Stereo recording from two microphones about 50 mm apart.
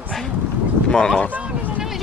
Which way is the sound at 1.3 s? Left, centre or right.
Right.